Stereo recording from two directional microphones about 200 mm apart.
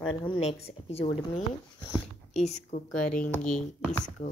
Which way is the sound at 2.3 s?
35° left (ahead or behind).